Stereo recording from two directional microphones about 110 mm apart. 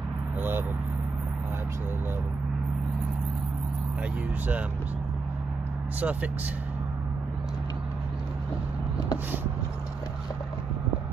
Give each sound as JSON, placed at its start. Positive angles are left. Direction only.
{"t": 0.4, "sound": "vehicle", "side_deg": -20}
{"t": 5.9, "sound": "speech", "side_deg": -15}